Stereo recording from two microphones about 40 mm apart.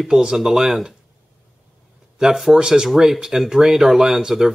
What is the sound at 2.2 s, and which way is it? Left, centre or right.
Speech, centre.